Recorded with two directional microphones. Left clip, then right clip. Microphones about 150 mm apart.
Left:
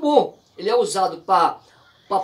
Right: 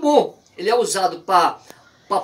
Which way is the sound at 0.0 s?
10° right (ahead or behind).